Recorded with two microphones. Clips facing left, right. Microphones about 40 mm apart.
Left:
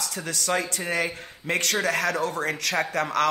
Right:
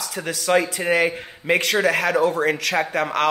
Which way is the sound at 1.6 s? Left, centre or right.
Centre.